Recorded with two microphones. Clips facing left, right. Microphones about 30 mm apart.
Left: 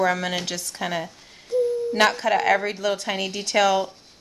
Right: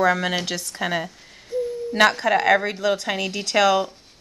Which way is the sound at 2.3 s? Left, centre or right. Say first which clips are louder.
Right 2 dB; right.